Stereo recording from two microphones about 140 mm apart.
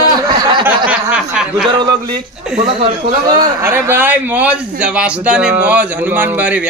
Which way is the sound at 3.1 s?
30° right (ahead or behind).